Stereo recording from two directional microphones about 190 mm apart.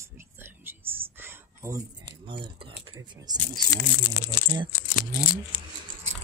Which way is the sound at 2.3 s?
25° right (ahead or behind).